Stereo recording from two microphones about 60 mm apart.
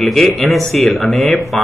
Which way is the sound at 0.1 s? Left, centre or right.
Centre.